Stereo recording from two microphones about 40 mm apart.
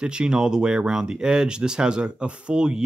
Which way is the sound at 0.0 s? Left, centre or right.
Right.